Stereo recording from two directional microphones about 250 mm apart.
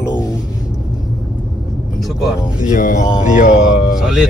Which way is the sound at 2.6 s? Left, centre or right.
Left.